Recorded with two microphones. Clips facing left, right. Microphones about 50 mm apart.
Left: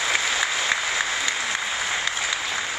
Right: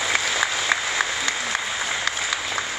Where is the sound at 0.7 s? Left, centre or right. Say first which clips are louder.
Right 2 dB; right.